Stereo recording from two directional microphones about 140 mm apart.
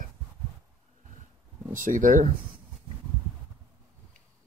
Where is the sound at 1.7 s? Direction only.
70° right (ahead or behind).